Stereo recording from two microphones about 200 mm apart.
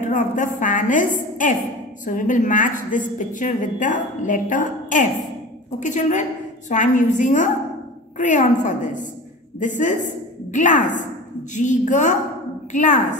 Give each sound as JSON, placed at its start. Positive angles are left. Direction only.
{"t": 0.0, "sound": "a woman's voice", "side_deg": 40}